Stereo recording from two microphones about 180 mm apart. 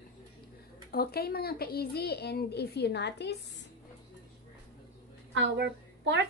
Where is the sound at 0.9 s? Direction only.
60° left (ahead or behind).